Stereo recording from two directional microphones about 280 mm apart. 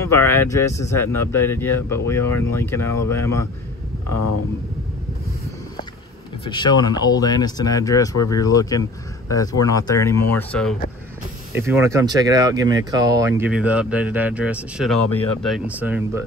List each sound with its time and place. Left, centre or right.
0.1 s speech: centre
6.4 s speech: centre
11.5 s speech: centre